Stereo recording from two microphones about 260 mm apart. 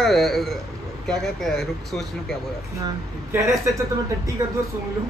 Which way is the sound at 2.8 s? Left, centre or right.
Centre.